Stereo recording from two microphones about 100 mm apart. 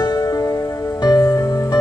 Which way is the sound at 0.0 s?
40° left (ahead or behind).